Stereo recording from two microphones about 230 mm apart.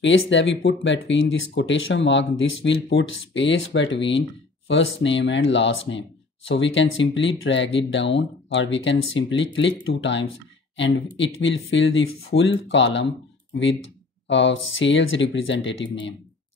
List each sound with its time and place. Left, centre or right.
0.0 s speech: left